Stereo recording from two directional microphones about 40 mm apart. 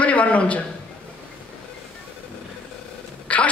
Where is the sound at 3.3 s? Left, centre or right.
Left.